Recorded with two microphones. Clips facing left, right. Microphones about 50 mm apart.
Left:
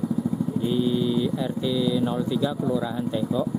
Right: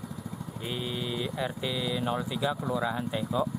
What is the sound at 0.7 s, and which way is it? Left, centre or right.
Speech, centre.